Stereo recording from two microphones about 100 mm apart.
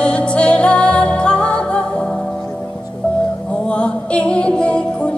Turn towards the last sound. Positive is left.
turn(degrees=10)  # may be behind; listen again after turning